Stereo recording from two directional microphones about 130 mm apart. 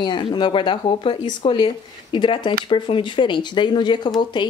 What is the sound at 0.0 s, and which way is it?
Speech, 35° left (ahead or behind).